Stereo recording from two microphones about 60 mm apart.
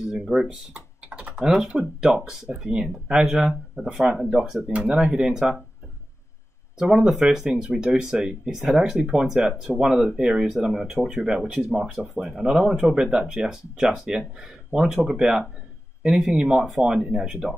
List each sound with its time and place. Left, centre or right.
0.0 s speech: centre
1.7 s speech: centre
6.8 s speech: centre
8.5 s speech: centre